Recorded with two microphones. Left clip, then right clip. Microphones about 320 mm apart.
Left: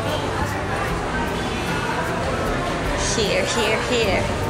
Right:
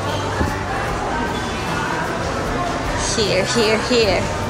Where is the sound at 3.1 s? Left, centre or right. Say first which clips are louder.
Right 4 dB; centre.